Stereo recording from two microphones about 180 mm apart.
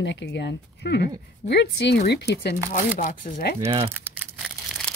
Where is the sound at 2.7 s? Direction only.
50° left (ahead or behind).